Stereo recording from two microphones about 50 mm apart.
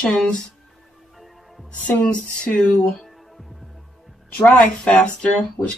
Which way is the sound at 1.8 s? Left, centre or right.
Left.